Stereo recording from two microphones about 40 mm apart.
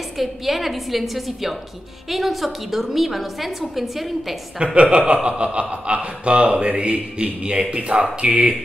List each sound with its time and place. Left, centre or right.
0.2 s a woman's voice: centre
4.7 s a man's voice: right